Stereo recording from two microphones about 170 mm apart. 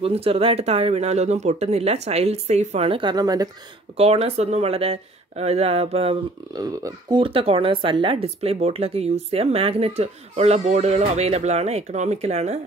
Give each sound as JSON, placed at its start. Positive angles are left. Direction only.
{"t": 0.0, "sound": "speech", "side_deg": -35}
{"t": 3.9, "sound": "speech", "side_deg": -35}
{"t": 6.5, "sound": "speech", "side_deg": -25}